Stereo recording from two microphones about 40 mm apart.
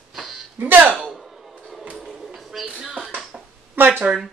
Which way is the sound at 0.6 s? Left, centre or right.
Right.